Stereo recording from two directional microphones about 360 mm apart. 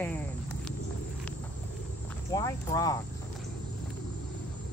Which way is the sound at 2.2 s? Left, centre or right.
Centre.